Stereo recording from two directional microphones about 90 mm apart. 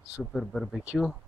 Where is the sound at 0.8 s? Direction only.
10° right (ahead or behind).